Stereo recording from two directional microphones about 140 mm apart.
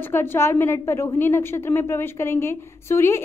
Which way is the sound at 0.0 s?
15° left (ahead or behind).